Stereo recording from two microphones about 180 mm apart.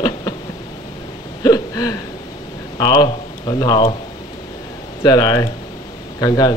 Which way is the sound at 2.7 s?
25° left (ahead or behind).